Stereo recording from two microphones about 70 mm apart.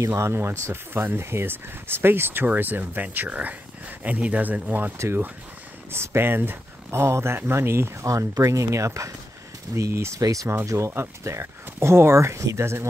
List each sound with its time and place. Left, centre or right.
0.1 s speech: right
4.9 s speech: right
8.1 s speech: right
10.2 s speech: right
10.9 s speech: right